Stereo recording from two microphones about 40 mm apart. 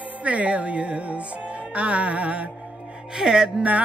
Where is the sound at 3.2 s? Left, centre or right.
Centre.